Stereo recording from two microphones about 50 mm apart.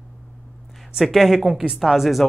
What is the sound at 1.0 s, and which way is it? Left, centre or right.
Speech, centre.